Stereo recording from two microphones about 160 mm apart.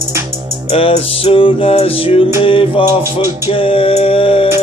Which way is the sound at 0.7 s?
35° left (ahead or behind).